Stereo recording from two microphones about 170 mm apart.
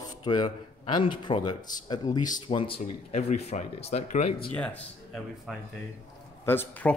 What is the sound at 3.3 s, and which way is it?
Speech, 45° left (ahead or behind).